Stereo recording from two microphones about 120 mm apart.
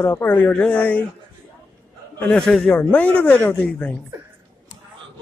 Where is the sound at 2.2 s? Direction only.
5° left (ahead or behind).